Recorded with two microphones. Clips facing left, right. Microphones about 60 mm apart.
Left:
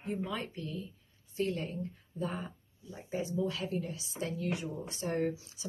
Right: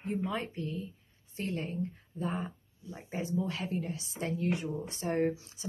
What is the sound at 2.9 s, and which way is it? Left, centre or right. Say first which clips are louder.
A woman's voice: right 1 dB; right.